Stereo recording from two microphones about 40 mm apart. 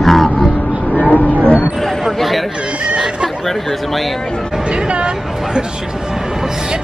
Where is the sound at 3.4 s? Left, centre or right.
Centre.